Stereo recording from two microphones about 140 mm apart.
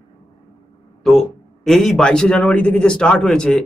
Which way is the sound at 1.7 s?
Centre (ahead or behind).